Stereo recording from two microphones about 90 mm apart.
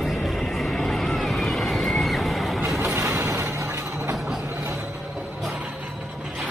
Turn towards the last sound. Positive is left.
turn(degrees=-5)  # may be behind; listen again after turning